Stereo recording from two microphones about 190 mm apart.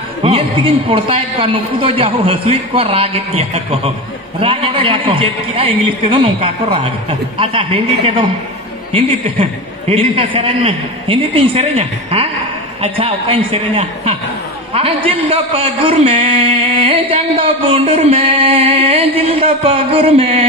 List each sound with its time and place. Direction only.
0.2 s a man's voice: 30° right (ahead or behind)